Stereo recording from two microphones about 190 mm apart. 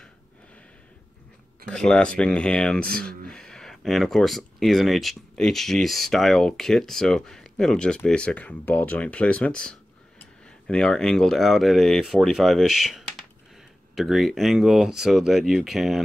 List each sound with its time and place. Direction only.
1.7 s speech: 5° left (ahead or behind)